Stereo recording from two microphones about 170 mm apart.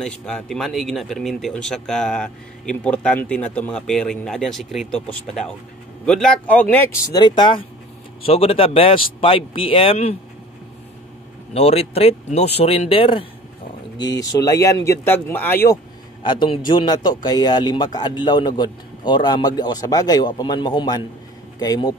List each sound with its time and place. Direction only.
0.0 s speech: 5° left (ahead or behind)
7.1 s a man's voice: 25° left (ahead or behind)
11.5 s speech: 40° left (ahead or behind)
14.2 s speech: 20° left (ahead or behind)
16.2 s a man's voice: 25° left (ahead or behind)